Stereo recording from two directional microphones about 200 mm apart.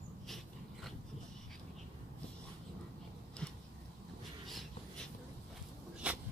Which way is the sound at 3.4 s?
5° left (ahead or behind).